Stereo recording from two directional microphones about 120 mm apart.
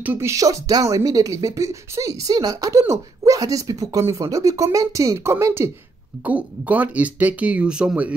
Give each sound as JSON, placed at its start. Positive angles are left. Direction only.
{"t": 0.0, "sound": "speech", "side_deg": -15}
{"t": 0.3, "sound": "speech", "side_deg": -30}